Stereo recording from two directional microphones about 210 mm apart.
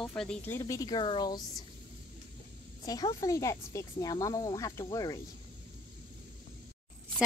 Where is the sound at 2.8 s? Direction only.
20° left (ahead or behind).